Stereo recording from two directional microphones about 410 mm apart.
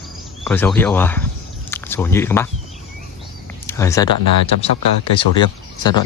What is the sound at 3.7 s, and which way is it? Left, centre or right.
Speech, centre.